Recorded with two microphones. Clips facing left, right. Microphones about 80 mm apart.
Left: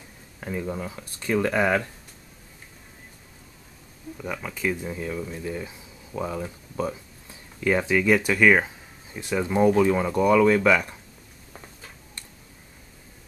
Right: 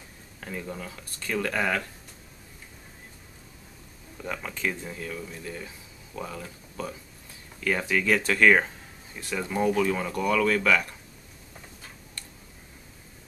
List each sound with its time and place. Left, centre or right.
0.4 s speech: centre
4.2 s speech: centre
9.2 s speech: centre